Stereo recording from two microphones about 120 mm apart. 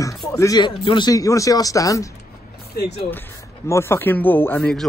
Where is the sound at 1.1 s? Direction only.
30° left (ahead or behind).